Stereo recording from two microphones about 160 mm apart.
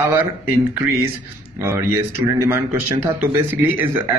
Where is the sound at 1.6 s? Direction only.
15° right (ahead or behind).